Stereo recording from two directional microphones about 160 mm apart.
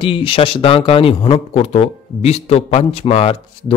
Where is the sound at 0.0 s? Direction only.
35° left (ahead or behind).